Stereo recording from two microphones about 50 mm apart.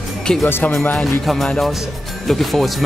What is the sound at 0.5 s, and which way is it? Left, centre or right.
Speech, left.